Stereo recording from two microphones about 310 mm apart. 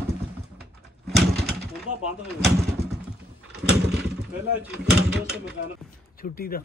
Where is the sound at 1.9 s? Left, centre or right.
Right.